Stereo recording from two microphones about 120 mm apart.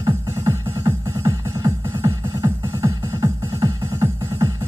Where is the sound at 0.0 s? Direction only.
25° right (ahead or behind).